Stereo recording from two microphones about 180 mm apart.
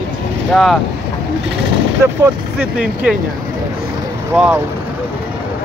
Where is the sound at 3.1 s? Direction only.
5° right (ahead or behind).